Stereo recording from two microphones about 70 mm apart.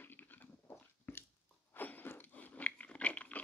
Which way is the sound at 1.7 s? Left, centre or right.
Left.